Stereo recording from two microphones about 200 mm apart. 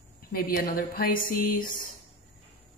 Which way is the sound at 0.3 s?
45° left (ahead or behind).